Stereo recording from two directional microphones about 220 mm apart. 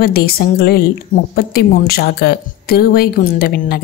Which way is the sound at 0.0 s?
45° left (ahead or behind).